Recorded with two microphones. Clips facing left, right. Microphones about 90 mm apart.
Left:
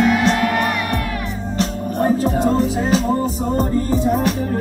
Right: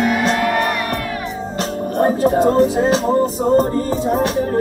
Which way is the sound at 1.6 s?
40° right (ahead or behind).